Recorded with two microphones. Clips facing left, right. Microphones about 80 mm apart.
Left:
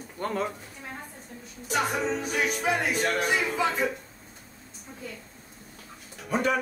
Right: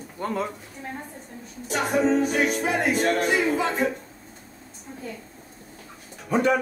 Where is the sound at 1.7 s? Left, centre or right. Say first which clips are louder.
Right 5 dB; right.